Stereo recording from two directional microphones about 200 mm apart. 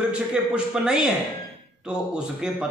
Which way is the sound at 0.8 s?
5° right (ahead or behind).